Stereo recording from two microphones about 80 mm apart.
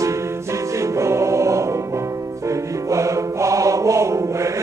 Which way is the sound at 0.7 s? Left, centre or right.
Right.